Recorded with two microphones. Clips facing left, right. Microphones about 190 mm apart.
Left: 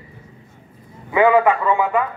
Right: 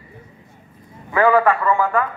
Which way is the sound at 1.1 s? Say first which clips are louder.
Left 1 dB; 20° left (ahead or behind).